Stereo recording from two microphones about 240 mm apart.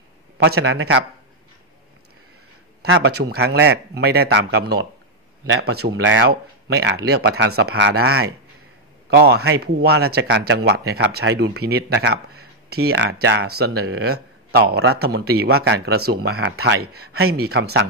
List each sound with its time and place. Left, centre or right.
0.4 s speech: right
2.8 s a man's voice: right